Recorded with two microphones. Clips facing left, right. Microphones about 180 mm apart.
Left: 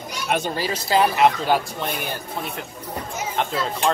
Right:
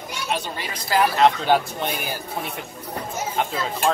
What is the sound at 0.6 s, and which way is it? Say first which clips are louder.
Speech: left 1 dB; 30° left (ahead or behind).